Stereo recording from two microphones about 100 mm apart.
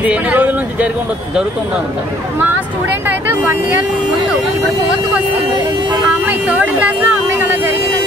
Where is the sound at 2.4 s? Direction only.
20° right (ahead or behind).